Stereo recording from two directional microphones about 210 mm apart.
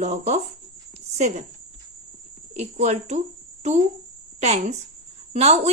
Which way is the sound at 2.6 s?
30° right (ahead or behind).